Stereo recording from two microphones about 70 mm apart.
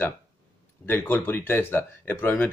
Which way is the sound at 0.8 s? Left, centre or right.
Left.